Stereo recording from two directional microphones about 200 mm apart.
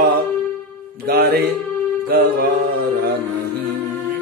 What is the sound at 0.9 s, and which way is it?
Music, 50° right (ahead or behind).